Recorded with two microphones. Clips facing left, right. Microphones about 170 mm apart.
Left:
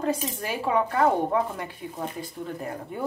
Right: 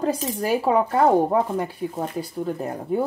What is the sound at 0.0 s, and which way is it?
Speech, 35° right (ahead or behind).